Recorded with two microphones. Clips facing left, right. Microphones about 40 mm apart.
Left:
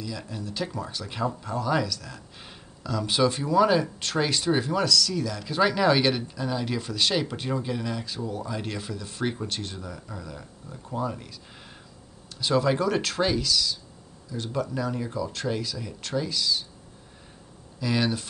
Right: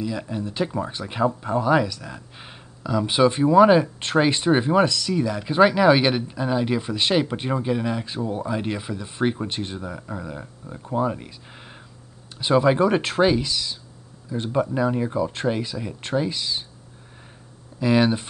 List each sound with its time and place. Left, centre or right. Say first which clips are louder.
0.0 s speech: right 7 dB; right
17.7 s speech: right 7 dB; right